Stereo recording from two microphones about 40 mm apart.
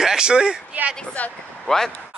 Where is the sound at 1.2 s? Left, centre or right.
Left.